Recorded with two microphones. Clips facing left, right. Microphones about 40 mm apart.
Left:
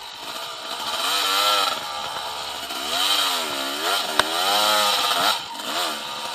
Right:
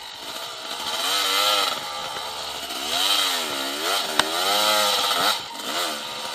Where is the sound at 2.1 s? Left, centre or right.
Left.